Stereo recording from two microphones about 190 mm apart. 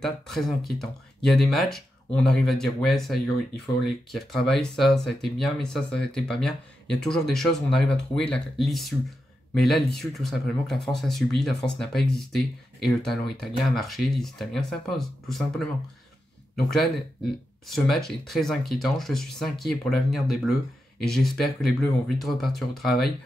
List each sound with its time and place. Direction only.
0.0 s speech: centre (ahead or behind)
17.6 s speech: centre (ahead or behind)